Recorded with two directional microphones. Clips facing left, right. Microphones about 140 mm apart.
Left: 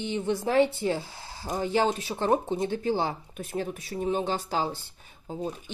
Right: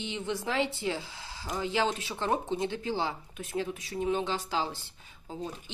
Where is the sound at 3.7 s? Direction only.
35° left (ahead or behind).